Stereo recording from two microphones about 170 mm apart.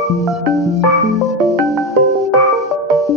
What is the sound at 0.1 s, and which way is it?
Music, centre (ahead or behind).